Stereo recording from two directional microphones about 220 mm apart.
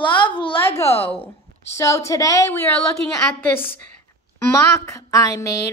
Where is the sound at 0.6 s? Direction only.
10° left (ahead or behind).